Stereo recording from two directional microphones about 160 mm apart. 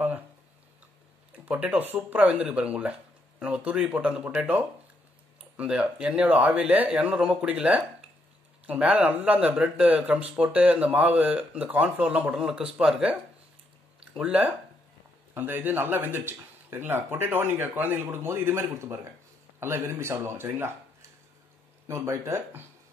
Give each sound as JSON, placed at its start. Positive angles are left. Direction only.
{"t": 1.3, "sound": "speech", "side_deg": -10}
{"t": 21.8, "sound": "speech", "side_deg": -15}